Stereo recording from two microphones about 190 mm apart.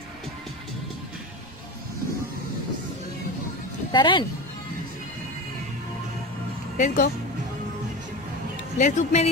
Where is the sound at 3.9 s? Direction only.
25° left (ahead or behind).